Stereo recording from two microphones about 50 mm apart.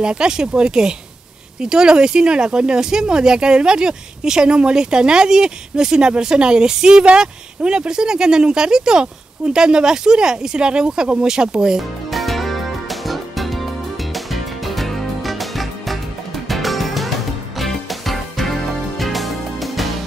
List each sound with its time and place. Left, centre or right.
0.0 s speech: centre
12.1 s music: centre